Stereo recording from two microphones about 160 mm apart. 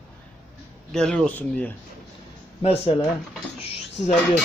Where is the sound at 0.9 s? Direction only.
5° left (ahead or behind).